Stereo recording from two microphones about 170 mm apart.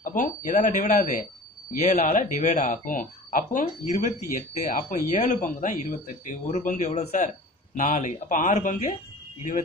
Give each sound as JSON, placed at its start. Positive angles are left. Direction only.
{"t": 0.0, "sound": "speech", "side_deg": 50}